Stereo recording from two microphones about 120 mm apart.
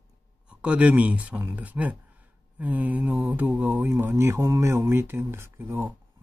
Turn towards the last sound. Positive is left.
turn(degrees=-20)  # may be behind; listen again after turning